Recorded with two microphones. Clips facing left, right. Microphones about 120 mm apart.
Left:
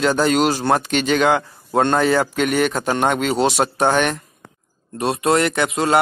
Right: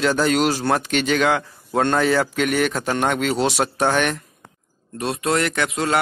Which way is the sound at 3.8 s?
20° left (ahead or behind).